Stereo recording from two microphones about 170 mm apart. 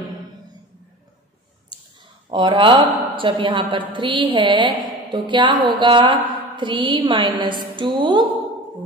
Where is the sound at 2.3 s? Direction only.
30° right (ahead or behind).